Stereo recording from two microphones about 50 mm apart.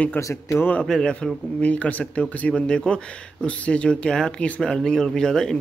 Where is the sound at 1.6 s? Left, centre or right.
Left.